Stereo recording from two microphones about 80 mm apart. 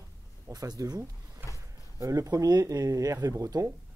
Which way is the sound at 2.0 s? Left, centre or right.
Right.